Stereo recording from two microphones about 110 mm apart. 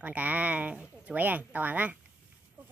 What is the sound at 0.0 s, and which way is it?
Speech, 15° right (ahead or behind).